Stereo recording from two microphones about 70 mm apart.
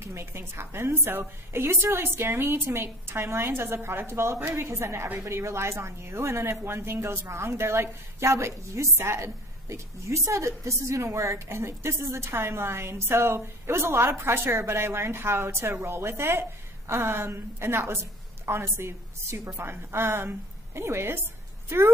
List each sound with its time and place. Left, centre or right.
0.0 s a woman's voice: right